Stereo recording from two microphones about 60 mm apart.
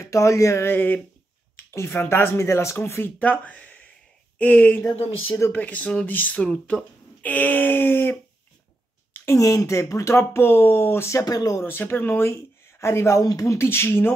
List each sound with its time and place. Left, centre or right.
0.0 s speech: left
0.7 s speech: left
1.6 s a sound: left
2.0 s speech: left
3.0 s speech: left
9.4 s speech: left
11.1 s speech: left
11.6 s speech: left
13.2 s speech: left
13.6 s speech: left